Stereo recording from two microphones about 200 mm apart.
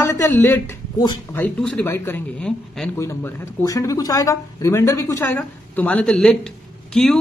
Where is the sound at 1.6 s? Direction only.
5° left (ahead or behind).